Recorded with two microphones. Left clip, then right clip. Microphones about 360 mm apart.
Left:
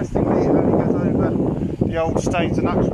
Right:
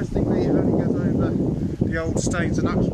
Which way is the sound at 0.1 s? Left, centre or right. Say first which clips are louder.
Left 5 dB; left.